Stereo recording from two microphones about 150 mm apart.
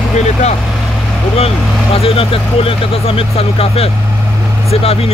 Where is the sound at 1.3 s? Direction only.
40° left (ahead or behind).